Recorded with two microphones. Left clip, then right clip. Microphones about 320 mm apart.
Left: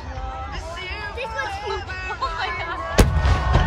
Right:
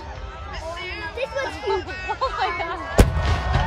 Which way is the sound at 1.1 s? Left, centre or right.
Right.